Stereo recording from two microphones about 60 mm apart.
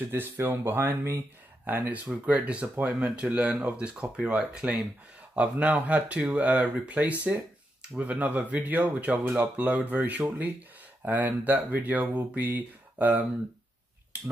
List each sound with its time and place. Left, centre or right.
0.1 s speech: right
1.9 s speech: right
14.1 s speech: right